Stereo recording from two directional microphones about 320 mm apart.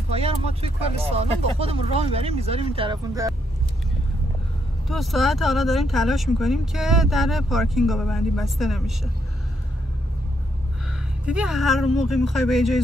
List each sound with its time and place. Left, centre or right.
0.1 s speech: centre
4.8 s speech: centre
10.9 s speech: centre